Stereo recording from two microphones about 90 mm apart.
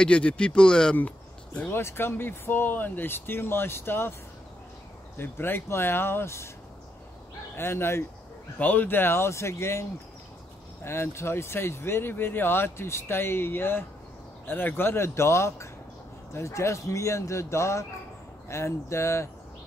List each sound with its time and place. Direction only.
0.0 s speech: 10° left (ahead or behind)
1.7 s speech: 25° left (ahead or behind)
5.1 s speech: 25° left (ahead or behind)
7.5 s a man's voice: 25° left (ahead or behind)